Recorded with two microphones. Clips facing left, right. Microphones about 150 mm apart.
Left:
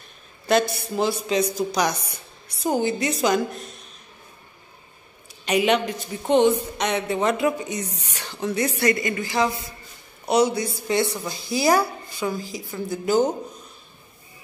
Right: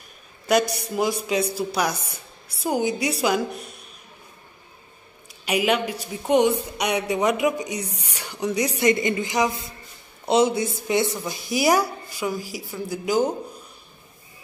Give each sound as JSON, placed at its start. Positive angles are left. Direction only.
{"t": 0.5, "sound": "a woman's voice", "side_deg": -15}
{"t": 5.4, "sound": "a woman's voice", "side_deg": -5}